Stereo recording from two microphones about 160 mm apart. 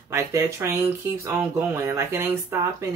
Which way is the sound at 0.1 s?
20° right (ahead or behind).